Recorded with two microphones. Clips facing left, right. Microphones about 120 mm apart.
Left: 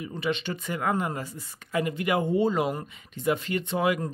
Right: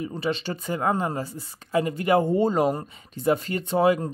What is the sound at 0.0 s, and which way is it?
Speech, 35° right (ahead or behind).